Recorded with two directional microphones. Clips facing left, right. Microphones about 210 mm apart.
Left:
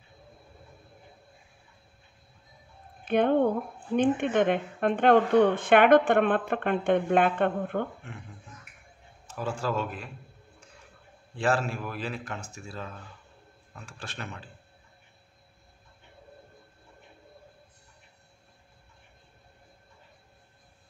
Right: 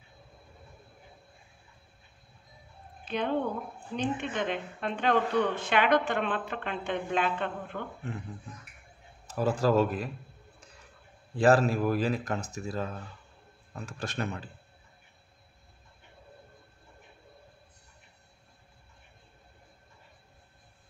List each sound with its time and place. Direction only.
3.1 s speech: 55° left (ahead or behind)
9.3 s a man's voice: 40° right (ahead or behind)
11.3 s a man's voice: 40° right (ahead or behind)